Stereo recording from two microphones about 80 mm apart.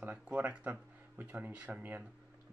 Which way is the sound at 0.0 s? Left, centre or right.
Centre.